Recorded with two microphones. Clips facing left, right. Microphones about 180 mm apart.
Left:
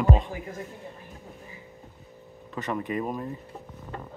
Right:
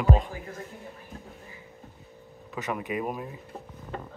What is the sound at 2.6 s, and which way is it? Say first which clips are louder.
Speech: left 1 dB; 10° right (ahead or behind).